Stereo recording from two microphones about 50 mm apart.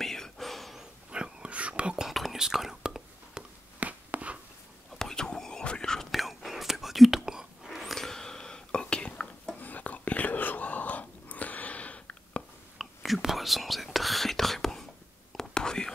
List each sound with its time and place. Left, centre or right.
0.0 s whispering: centre
0.7 s whispering: centre
2.0 s whispering: centre
3.8 s a sound: right
4.9 s whispering: centre
6.1 s whispering: centre; by 9.3 s left
9.6 s whispering: left
12.7 s whispering: centre